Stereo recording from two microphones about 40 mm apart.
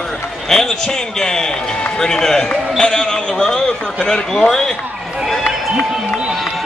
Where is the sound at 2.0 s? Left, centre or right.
Centre.